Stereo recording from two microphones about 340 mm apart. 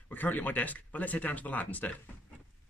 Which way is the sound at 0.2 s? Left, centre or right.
Centre.